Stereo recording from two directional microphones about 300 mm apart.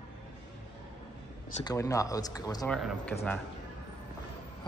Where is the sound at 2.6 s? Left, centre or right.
Centre.